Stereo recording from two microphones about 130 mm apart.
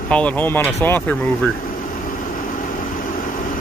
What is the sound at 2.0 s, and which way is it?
Vehicle, 90° left.